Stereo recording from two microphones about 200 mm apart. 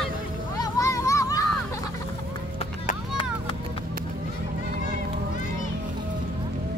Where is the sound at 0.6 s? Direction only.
15° left (ahead or behind).